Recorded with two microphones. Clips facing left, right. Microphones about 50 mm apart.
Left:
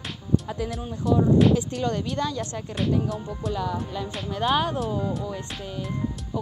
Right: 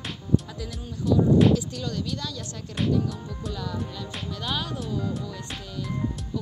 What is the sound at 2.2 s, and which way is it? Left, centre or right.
Speech, left.